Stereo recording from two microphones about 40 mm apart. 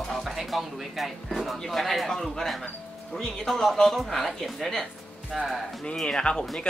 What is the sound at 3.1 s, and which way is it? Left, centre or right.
Speech, centre.